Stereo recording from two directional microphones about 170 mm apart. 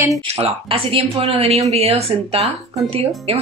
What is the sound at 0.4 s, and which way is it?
Speech, 35° right (ahead or behind).